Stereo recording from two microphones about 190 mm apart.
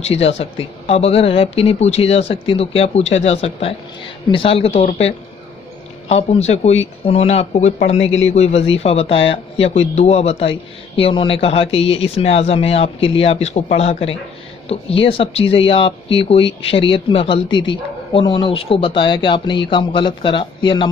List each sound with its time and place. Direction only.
0.0 s speech: 35° left (ahead or behind)